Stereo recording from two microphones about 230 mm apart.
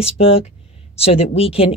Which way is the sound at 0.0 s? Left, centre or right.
Left.